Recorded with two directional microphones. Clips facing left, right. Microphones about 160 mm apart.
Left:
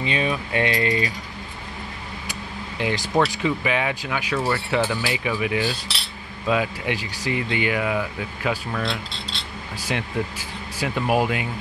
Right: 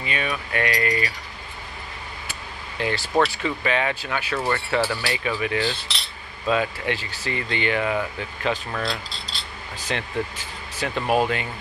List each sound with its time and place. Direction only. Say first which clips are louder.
0.0 s speech: left 4 dB; 25° left (ahead or behind)
2.8 s speech: even; 15° left (ahead or behind); by 9.4 s centre (ahead or behind)
9.8 s speech: left 1 dB; 10° left (ahead or behind)